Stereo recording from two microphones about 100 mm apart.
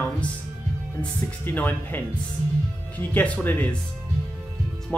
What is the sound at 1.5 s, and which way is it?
Speech, 20° left (ahead or behind).